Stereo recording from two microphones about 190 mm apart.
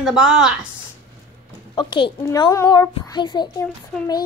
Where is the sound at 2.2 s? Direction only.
20° left (ahead or behind).